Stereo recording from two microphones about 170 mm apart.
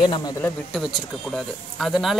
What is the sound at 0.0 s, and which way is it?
Speech, 25° left (ahead or behind).